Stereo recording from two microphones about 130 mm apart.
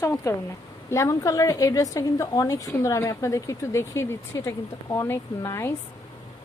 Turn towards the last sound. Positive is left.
turn(degrees=20)  # may be behind; listen again after turning